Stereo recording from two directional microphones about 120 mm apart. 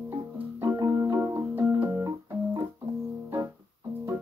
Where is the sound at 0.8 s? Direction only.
30° right (ahead or behind).